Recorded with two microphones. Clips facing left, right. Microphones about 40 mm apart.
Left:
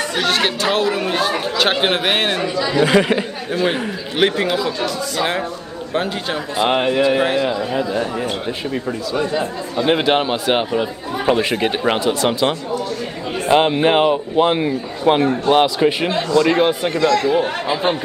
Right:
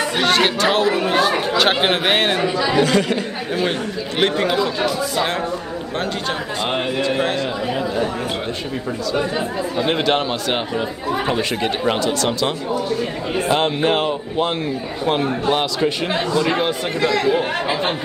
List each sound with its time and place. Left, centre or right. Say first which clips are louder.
0.2 s speech: right 2 dB; centre
2.4 s speech: right 1 dB; centre
2.8 s speech: left 4 dB; left
4.2 s speech: left 1 dB; centre
4.6 s speech: right 1 dB; centre
6.6 s speech: left 7 dB; centre
9.1 s speech: left 1 dB; centre
9.4 s speech: even; centre
16.1 s speech: left 1 dB; centre
16.3 s speech: left 6 dB; centre
17.0 s speech: left 2 dB; centre